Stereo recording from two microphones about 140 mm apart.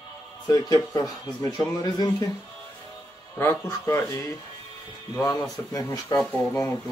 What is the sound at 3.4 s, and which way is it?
Speech, 20° left (ahead or behind).